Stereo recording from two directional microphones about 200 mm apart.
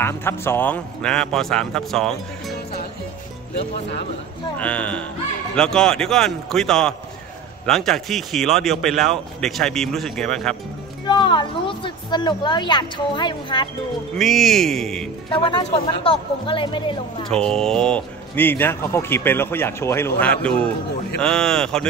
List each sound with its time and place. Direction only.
0.0 s a man's voice: 10° left (ahead or behind)
4.6 s a man's voice: 5° left (ahead or behind)
11.1 s a woman's voice: 25° left (ahead or behind)
14.1 s a man's voice: centre (ahead or behind)
15.2 s speech: 25° left (ahead or behind)
17.3 s a man's voice: 5° left (ahead or behind)